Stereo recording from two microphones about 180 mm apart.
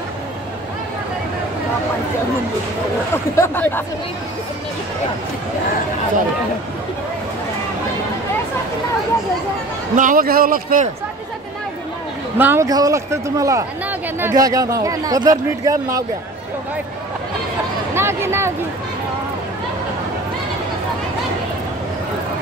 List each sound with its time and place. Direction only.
3.3 s speech: 10° left (ahead or behind)
9.9 s a man's voice: 50° right (ahead or behind)
12.4 s speech: 15° right (ahead or behind)
17.9 s speech: 15° right (ahead or behind)